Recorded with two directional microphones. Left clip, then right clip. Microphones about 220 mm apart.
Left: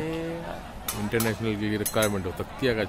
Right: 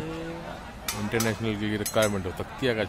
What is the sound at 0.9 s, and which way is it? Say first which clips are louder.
Speech: even; centre (ahead or behind).